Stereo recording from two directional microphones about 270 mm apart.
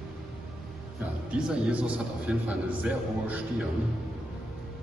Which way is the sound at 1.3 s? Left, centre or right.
Centre.